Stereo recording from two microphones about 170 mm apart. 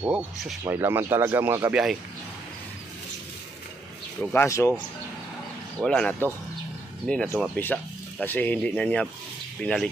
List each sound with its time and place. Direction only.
0.0 s speech: 10° right (ahead or behind)
4.2 s speech: 10° left (ahead or behind)
5.8 s speech: 5° left (ahead or behind)